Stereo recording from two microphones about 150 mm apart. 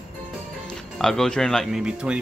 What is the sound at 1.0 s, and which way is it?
Speech, 5° left (ahead or behind).